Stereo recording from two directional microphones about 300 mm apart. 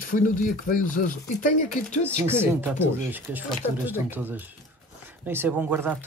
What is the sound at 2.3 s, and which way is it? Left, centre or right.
Speech, centre.